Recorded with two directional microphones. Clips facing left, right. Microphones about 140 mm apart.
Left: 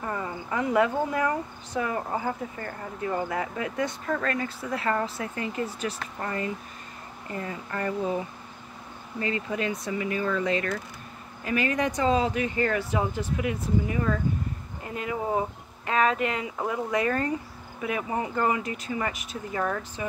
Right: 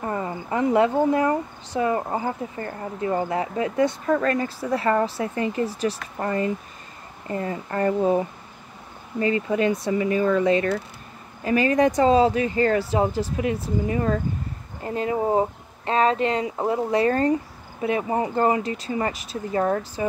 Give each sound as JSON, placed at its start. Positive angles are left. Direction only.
{"t": 0.0, "sound": "speech", "side_deg": -30}